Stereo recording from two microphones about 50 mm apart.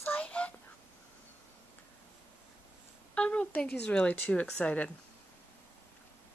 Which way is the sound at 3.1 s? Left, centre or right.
Left.